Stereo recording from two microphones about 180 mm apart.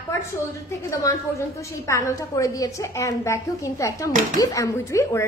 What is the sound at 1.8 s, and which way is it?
A woman's voice, 15° left (ahead or behind).